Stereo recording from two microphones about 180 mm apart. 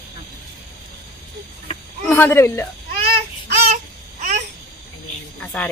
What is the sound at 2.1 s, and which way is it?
Speech, 15° left (ahead or behind).